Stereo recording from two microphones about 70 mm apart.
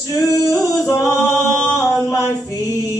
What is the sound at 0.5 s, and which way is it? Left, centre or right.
Singing, left.